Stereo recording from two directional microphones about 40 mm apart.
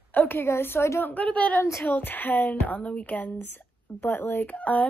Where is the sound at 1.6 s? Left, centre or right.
Left.